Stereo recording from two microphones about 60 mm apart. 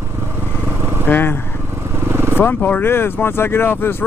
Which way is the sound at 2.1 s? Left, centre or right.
Right.